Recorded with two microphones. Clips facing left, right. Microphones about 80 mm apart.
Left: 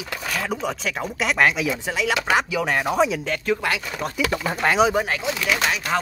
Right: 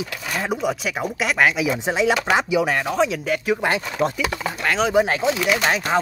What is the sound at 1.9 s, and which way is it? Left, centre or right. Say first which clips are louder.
Speech: right 7 dB; right.